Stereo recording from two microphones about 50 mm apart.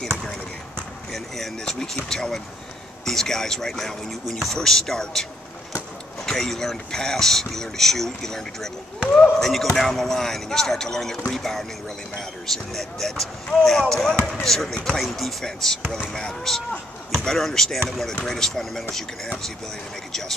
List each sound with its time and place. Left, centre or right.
1.1 s speech: centre
1.6 s speech: centre
6.2 s speech: centre
14.7 s speech: centre
15.0 s speech: centre
20.1 s speech: centre